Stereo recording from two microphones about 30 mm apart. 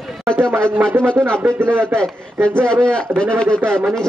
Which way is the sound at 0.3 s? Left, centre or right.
Left.